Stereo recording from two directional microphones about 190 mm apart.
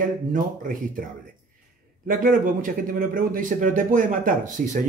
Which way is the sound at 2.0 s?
45° right (ahead or behind).